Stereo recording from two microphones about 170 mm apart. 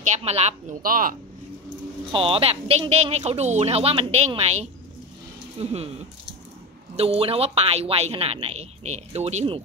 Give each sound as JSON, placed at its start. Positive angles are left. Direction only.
{"t": 0.0, "sound": "speech", "side_deg": -40}
{"t": 2.1, "sound": "speech", "side_deg": -35}
{"t": 7.0, "sound": "speech", "side_deg": -35}